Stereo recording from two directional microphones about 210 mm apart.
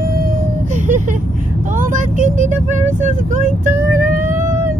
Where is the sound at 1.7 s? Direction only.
40° right (ahead or behind).